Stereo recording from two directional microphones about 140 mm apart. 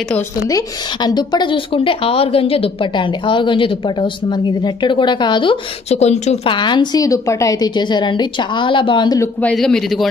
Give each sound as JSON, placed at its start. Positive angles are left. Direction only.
{"t": 0.5, "sound": "a woman's voice", "side_deg": 25}
{"t": 5.9, "sound": "speech", "side_deg": 55}
{"t": 6.5, "sound": "a woman's voice", "side_deg": 35}
{"t": 9.4, "sound": "a man's voice", "side_deg": 5}